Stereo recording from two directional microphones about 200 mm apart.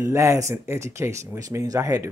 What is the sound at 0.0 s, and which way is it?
Speech, 15° right (ahead or behind).